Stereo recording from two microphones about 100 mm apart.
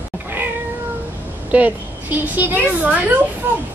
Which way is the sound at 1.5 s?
15° right (ahead or behind).